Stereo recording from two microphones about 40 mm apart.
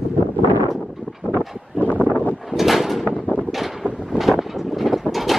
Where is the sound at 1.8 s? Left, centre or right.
Left.